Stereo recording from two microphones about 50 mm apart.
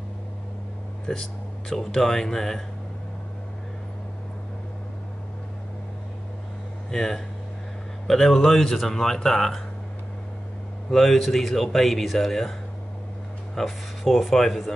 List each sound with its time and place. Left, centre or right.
1.0 s speech: centre
6.9 s speech: centre
10.9 s speech: centre
13.6 s speech: centre